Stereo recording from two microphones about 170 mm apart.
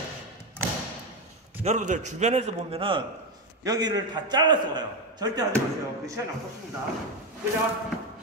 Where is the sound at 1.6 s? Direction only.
45° right (ahead or behind).